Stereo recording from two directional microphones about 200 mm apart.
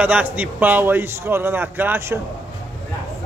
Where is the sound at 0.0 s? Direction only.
5° right (ahead or behind).